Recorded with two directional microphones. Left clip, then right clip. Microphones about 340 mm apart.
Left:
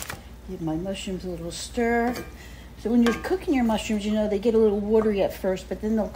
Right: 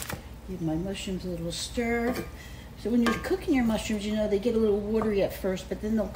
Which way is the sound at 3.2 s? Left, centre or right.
Centre.